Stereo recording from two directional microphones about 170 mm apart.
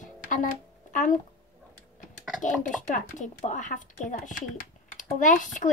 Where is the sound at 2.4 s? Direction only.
45° left (ahead or behind).